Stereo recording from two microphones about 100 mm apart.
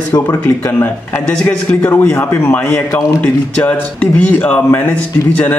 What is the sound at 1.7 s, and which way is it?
A man's voice, 15° left (ahead or behind).